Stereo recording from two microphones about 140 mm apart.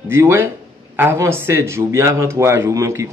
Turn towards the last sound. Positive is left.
turn(degrees=-20)  # may be behind; listen again after turning